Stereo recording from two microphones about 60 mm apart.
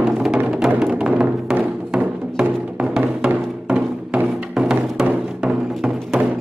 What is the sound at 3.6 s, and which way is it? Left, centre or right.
Music, centre.